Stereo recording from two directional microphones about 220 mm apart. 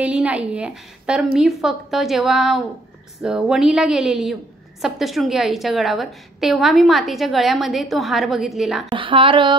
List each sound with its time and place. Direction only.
0.0 s a woman's voice: 5° right (ahead or behind)
8.8 s a woman's voice: 25° right (ahead or behind)